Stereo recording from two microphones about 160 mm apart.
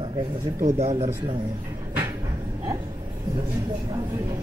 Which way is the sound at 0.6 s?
45° right (ahead or behind).